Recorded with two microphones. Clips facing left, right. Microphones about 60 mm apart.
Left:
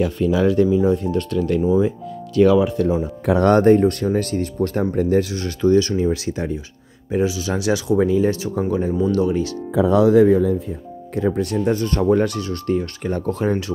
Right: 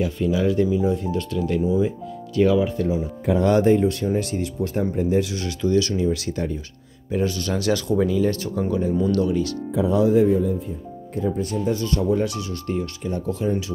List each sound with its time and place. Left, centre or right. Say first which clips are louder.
0.0 s speech: left 4 dB; left
2.3 s speech: left 4 dB; left
3.5 s speech: left 4 dB; left
5.2 s speech: left 5 dB; left
6.3 s speech: left 2 dB; left
7.2 s speech: left 2 dB; centre
8.0 s speech: left 3 dB; left
8.9 s speech: left 1 dB; centre
9.2 s speech: left 2 dB; left
9.8 s speech: left 4 dB; left
11.1 s speech: left 4 dB; left
11.7 s speech: left 3 dB; left
12.1 s speech: left 5 dB; left